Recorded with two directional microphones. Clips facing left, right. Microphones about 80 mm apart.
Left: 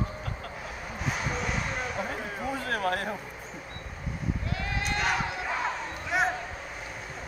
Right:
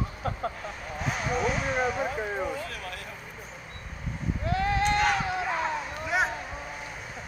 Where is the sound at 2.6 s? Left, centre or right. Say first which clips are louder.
Left 8 dB; left.